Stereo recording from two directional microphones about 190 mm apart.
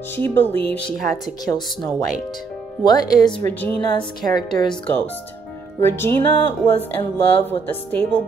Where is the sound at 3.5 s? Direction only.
10° left (ahead or behind).